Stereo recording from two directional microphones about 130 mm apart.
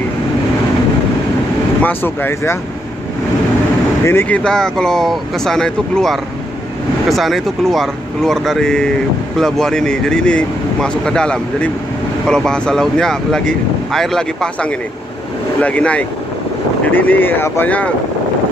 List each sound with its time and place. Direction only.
1.8 s speech: 15° left (ahead or behind)
4.0 s speech: 15° left (ahead or behind)